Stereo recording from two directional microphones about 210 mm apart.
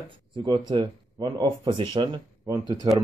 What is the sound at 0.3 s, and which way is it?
A man's voice, 25° right (ahead or behind).